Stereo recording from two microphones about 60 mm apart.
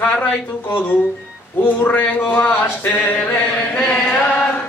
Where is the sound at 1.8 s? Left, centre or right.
Left.